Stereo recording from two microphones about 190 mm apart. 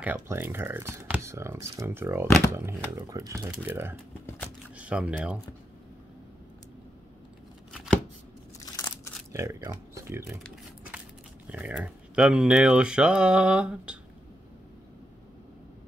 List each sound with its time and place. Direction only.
0.0 s speech: 10° right (ahead or behind)
7.7 s chopping: centre (ahead or behind)
8.7 s a sound: 15° left (ahead or behind)
9.3 s speech: 15° right (ahead or behind)
11.5 s speech: 10° right (ahead or behind)